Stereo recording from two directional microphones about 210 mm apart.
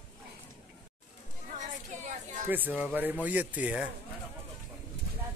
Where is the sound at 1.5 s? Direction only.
35° right (ahead or behind).